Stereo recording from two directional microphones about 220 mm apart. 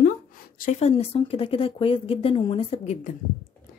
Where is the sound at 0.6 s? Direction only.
30° left (ahead or behind).